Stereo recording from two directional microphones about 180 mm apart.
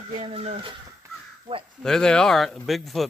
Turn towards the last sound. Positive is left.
turn(degrees=0)  # may be behind; listen again after turning